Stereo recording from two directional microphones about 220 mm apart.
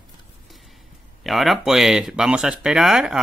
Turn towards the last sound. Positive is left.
turn(degrees=0)  # may be behind; listen again after turning